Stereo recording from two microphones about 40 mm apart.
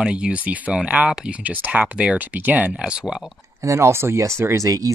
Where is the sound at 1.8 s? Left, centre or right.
Right.